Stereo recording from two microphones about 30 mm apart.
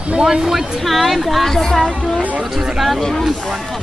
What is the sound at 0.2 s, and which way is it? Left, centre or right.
Speech, centre.